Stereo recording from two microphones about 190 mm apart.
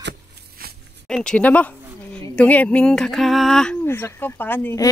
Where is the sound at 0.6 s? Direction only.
50° right (ahead or behind).